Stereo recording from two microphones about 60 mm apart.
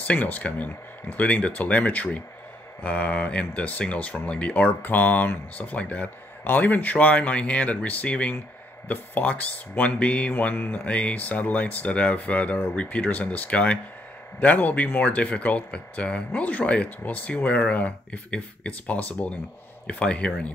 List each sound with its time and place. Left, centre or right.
0.0 s speech: left
10.3 s speech: left